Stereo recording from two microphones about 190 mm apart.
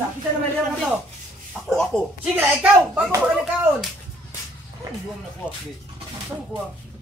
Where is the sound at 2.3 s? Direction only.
10° right (ahead or behind).